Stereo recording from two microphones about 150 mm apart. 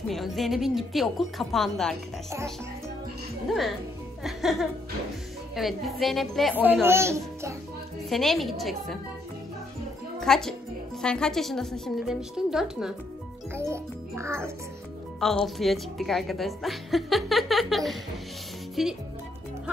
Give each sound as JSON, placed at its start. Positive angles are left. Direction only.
{"t": 0.1, "sound": "a woman's voice", "side_deg": 0}
{"t": 3.4, "sound": "a woman's voice", "side_deg": 0}
{"t": 6.8, "sound": "a child's voice", "side_deg": -15}
{"t": 8.1, "sound": "a woman's voice", "side_deg": 0}
{"t": 10.2, "sound": "a woman's voice", "side_deg": 5}
{"t": 13.6, "sound": "a child's voice", "side_deg": -20}
{"t": 15.1, "sound": "a woman's voice", "side_deg": 0}